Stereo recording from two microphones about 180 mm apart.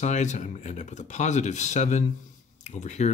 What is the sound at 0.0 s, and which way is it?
Speech, 40° left (ahead or behind).